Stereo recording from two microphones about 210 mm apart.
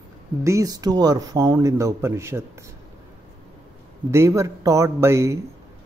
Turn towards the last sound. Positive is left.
turn(degrees=-15)  # may be behind; listen again after turning